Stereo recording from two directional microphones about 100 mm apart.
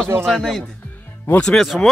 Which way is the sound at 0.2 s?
5° left (ahead or behind).